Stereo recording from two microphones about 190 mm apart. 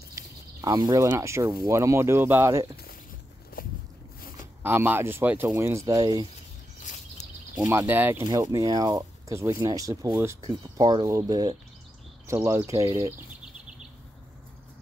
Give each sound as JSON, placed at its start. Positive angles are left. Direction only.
{"t": 0.1, "sound": "speech", "side_deg": -20}
{"t": 3.6, "sound": "walk", "side_deg": 50}
{"t": 4.6, "sound": "speech", "side_deg": -10}
{"t": 6.8, "sound": "a sound", "side_deg": 40}
{"t": 7.5, "sound": "speech", "side_deg": -10}
{"t": 8.2, "sound": "speech", "side_deg": -20}